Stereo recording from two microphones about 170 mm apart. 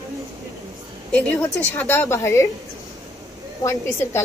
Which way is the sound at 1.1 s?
10° left (ahead or behind).